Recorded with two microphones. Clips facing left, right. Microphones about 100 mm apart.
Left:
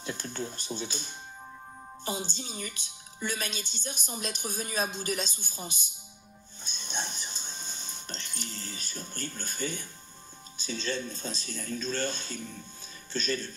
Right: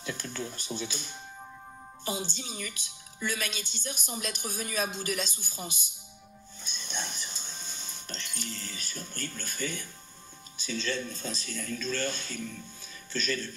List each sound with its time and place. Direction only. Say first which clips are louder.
0.0 s a woman's voice: left 1 dB; 30° left (ahead or behind)
6.6 s music: left 1 dB; 30° left (ahead or behind)
10.6 s a woman's voice: even; 30° left (ahead or behind)